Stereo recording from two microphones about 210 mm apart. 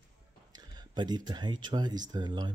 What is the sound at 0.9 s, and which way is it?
Speech, 20° right (ahead or behind).